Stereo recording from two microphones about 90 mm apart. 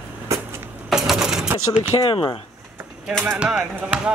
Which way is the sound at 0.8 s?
5° right (ahead or behind).